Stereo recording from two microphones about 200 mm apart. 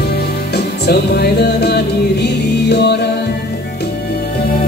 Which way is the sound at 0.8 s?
55° left (ahead or behind).